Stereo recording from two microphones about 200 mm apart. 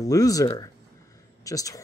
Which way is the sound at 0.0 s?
15° left (ahead or behind).